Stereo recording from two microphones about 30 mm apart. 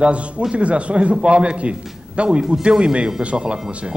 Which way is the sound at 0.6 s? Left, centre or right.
Right.